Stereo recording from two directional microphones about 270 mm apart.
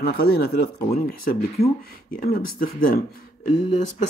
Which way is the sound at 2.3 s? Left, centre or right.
Left.